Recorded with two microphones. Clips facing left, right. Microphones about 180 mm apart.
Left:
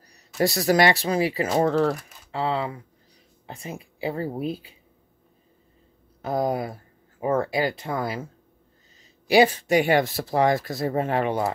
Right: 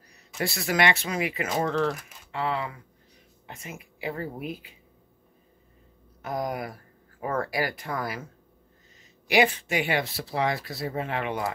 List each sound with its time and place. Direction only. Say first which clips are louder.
0.4 s speech: left 6 dB; 40° left (ahead or behind)
6.2 s speech: left 6 dB; 30° left (ahead or behind)
9.3 s speech: left 5 dB; 35° left (ahead or behind)